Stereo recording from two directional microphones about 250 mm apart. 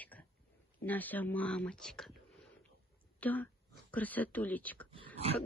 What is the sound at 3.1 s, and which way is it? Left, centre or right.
Speech, centre.